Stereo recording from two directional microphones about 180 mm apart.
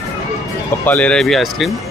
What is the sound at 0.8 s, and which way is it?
Speech, 5° left (ahead or behind).